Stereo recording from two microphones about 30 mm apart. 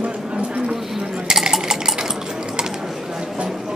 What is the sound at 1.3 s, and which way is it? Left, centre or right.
Dishes, right.